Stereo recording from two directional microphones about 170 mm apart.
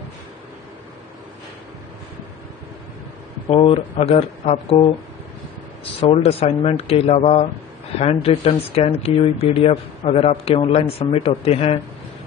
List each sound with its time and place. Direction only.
3.4 s speech: 35° left (ahead or behind)
5.9 s speech: 35° left (ahead or behind)